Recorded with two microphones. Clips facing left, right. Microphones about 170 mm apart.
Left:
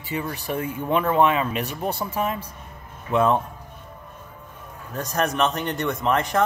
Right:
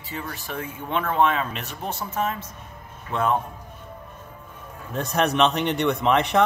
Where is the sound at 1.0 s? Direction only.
10° left (ahead or behind).